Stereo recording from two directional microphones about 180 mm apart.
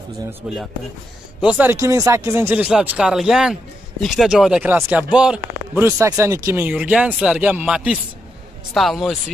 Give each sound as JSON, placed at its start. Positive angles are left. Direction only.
{"t": 0.3, "sound": "speech", "side_deg": 0}